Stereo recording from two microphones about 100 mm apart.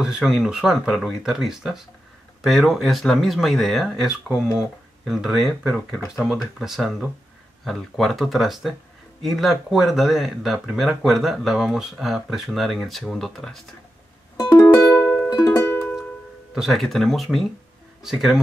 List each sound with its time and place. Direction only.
0.0 s speech: 5° right (ahead or behind)
14.3 s music: 40° left (ahead or behind)
14.8 s music: 20° left (ahead or behind)
15.2 s music: 40° left (ahead or behind)
15.5 s music: 25° left (ahead or behind)
16.5 s speech: centre (ahead or behind)